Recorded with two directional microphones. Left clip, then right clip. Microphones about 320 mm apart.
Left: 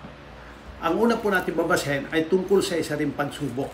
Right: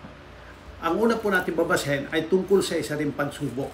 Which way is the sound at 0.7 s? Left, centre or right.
Centre.